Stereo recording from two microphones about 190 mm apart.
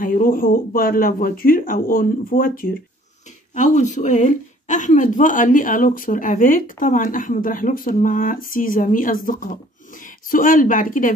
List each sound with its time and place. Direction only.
0.0 s a woman's voice: 45° left (ahead or behind)